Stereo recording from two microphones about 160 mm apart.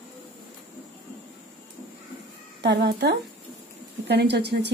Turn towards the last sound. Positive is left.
turn(degrees=-90)